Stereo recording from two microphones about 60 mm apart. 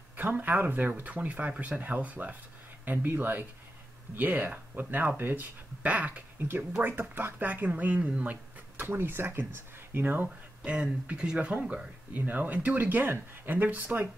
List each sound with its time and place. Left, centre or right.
0.2 s speech: right
6.8 s speech: right
7.3 s speech: right
10.2 s speech: centre